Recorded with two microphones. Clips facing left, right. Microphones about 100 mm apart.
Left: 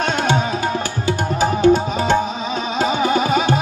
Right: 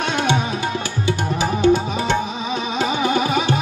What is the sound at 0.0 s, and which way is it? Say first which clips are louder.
Tabla: left 1 dB; 45° left (ahead or behind).